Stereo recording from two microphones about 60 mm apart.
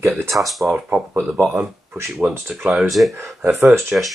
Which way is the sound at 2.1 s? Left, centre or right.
Centre.